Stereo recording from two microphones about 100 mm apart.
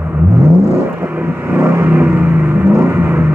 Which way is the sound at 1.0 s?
20° right (ahead or behind).